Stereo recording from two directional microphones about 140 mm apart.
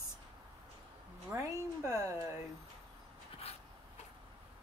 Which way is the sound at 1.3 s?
20° right (ahead or behind).